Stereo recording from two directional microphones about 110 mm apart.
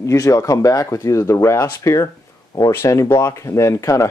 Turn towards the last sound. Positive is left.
turn(degrees=30)  # may be behind; listen again after turning